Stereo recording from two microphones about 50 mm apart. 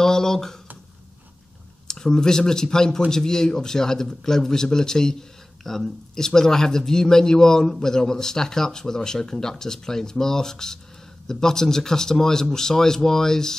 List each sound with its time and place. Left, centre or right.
0.0 s speech: centre
1.9 s speech: centre